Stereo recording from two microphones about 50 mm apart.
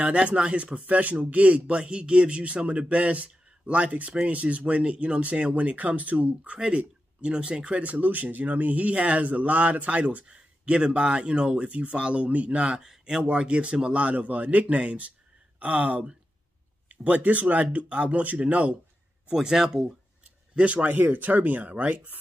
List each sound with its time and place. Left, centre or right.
0.0 s speech: right
6.6 s speech: centre
7.8 s speech: right
12.8 s speech: centre
19.3 s speech: centre
20.5 s speech: right